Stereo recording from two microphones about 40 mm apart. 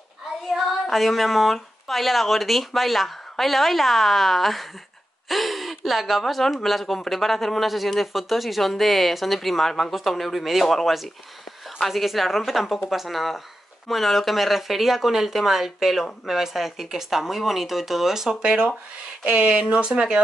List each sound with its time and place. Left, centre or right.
0.5 s speech: centre
18.3 s speech: right
19.2 s speech: right
19.6 s speech: right